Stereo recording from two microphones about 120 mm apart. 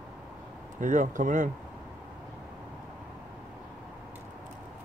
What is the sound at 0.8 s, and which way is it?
Speech, 90° right.